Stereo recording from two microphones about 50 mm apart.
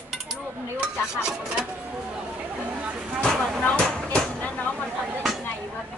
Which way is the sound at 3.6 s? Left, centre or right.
Left.